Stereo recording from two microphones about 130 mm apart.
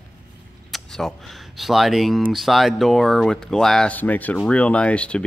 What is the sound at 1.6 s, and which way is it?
Speech, centre (ahead or behind).